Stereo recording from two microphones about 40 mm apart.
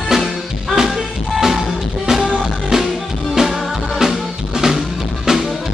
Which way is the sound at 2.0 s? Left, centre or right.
Centre.